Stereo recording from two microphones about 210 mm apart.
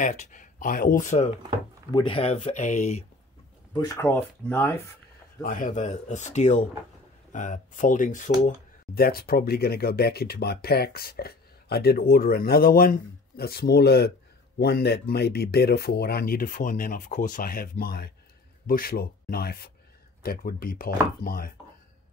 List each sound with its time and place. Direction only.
0.0 s speech: 35° left (ahead or behind)
1.9 s speech: 20° left (ahead or behind)
3.7 s speech: 15° left (ahead or behind)
5.4 s speech: 40° left (ahead or behind)